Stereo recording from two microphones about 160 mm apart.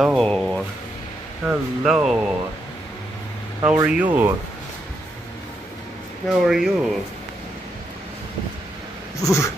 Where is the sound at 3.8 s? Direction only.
10° right (ahead or behind).